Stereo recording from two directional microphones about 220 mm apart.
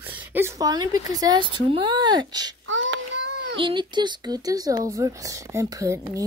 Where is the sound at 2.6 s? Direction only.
60° right (ahead or behind).